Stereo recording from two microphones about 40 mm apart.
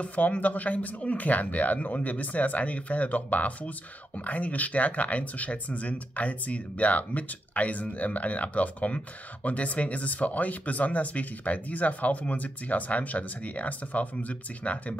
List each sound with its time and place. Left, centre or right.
0.0 s speech: left